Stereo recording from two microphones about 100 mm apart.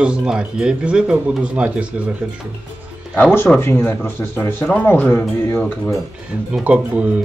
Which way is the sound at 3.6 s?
25° left (ahead or behind).